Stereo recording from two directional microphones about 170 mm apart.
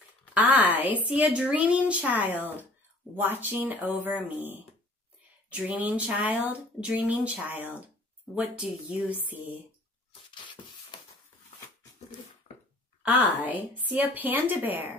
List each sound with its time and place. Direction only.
0.3 s a woman's voice: 10° right (ahead or behind)
10.3 s a sound: 25° left (ahead or behind)
13.0 s a woman's voice: 10° right (ahead or behind)